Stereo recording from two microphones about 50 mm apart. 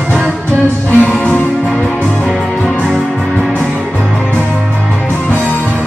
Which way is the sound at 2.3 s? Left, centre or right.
Centre.